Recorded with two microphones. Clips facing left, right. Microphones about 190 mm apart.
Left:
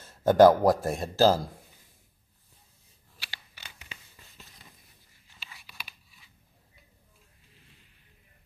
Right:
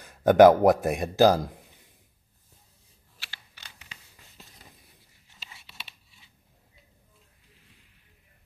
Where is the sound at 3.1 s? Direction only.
10° left (ahead or behind).